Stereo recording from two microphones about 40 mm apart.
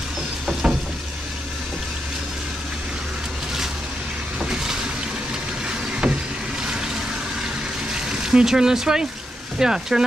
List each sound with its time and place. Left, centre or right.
0.5 s a sound: centre
4.4 s boat: centre
5.7 s vehicle: right
6.6 s a sound: centre
7.9 s vehicle: centre
9.6 s speech: centre